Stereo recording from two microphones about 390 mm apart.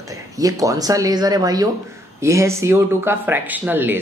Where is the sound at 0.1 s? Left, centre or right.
Centre.